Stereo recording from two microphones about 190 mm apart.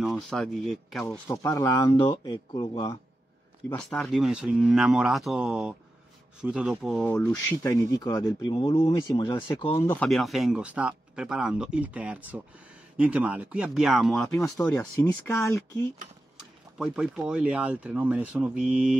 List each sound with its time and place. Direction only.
0.0 s speech: centre (ahead or behind)
1.0 s speech: 15° left (ahead or behind)
1.9 s speech: 30° left (ahead or behind)
3.7 s speech: 5° left (ahead or behind); by 9.8 s 25° left (ahead or behind)
9.8 s speech: 5° left (ahead or behind)
15.2 s speech: 15° left (ahead or behind)
16.3 s speech: 5° right (ahead or behind)